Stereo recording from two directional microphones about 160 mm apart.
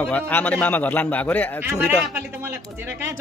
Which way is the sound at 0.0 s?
10° left (ahead or behind).